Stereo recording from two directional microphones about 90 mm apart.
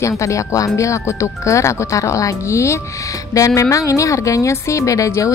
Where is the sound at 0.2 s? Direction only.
35° left (ahead or behind).